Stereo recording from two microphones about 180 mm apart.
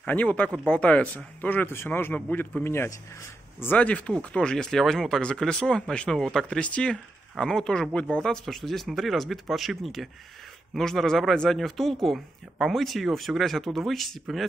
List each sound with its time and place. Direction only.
0.0 s speech: 10° left (ahead or behind)